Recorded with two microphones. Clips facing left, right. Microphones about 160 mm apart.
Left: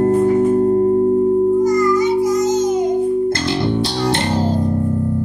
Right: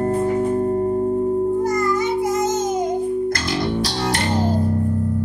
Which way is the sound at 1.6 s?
55° right (ahead or behind).